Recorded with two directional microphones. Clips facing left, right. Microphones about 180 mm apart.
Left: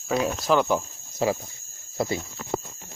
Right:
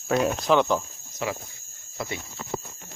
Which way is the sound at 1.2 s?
35° left (ahead or behind).